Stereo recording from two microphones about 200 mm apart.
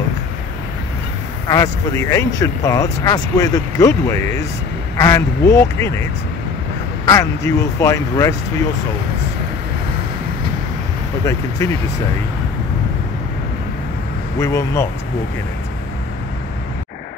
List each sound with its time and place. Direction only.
1.5 s speech: 15° left (ahead or behind)
7.1 s speech: 15° left (ahead or behind)
11.2 s speech: 15° left (ahead or behind)
14.4 s speech: 15° left (ahead or behind)